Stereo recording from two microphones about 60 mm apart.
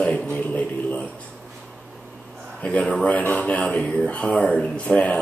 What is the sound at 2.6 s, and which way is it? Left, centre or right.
Speech, left.